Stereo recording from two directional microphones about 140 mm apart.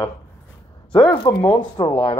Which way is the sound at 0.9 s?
35° left (ahead or behind).